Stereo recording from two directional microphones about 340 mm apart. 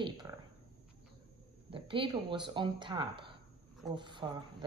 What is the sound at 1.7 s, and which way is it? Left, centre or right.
Speech, centre.